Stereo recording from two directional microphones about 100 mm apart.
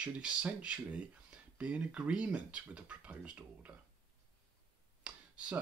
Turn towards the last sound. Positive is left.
turn(degrees=-10)  # may be behind; listen again after turning